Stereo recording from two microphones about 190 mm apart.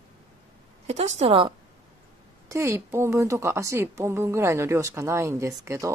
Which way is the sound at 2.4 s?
15° right (ahead or behind).